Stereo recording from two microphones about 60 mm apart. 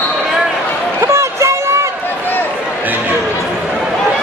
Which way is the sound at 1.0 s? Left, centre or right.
Right.